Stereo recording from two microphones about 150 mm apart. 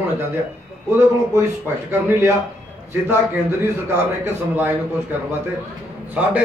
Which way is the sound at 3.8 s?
15° right (ahead or behind).